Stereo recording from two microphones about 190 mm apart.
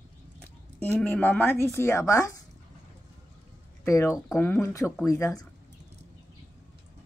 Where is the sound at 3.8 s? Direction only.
15° left (ahead or behind).